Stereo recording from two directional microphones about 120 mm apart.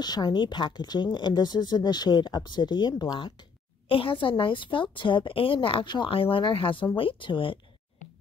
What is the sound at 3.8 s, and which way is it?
A woman's voice, 50° left (ahead or behind).